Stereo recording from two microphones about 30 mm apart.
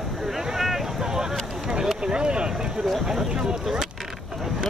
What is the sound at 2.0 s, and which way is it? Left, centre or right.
Speech, right.